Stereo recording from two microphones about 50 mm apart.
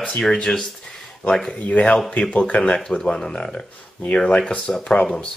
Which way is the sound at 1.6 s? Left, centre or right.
Left.